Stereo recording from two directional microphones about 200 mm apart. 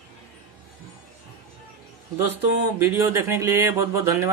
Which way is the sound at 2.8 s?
10° right (ahead or behind).